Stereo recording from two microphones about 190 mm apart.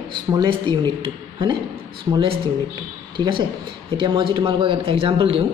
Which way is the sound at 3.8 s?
25° right (ahead or behind).